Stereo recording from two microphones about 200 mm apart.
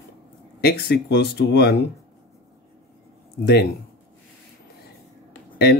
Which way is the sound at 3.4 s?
50° left (ahead or behind).